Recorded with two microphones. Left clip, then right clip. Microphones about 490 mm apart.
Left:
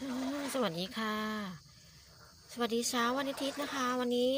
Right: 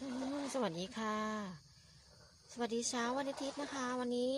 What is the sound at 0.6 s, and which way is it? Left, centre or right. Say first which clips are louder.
Speech: left 5 dB; right.